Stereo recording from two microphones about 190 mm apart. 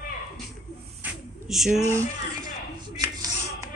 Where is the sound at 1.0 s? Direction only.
Centre (ahead or behind).